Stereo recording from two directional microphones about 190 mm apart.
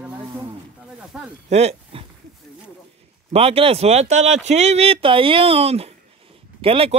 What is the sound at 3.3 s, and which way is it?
Speech, 30° right (ahead or behind).